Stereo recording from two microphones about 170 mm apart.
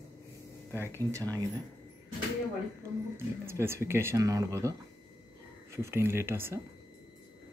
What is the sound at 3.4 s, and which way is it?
Speech, 15° right (ahead or behind).